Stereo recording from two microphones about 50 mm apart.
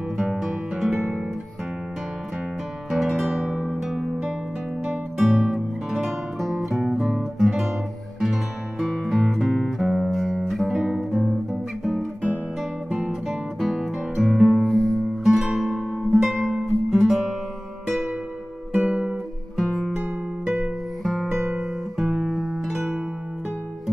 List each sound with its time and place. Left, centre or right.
0.4 s music: centre
2.9 s guitar: centre
3.6 s music: centre
7.3 s guitar: centre
8.2 s music: centre
10.5 s guitar: centre
11.8 s music: centre
15.3 s music: centre
15.6 s music: centre
16.9 s guitar: centre
18.8 s guitar: centre
19.5 s guitar: centre
21.0 s music: centre